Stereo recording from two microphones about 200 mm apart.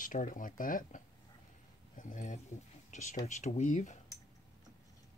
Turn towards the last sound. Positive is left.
turn(degrees=35)  # may be behind; listen again after turning